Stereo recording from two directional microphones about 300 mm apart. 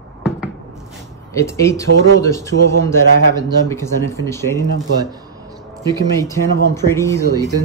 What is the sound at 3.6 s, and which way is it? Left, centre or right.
Speech, centre.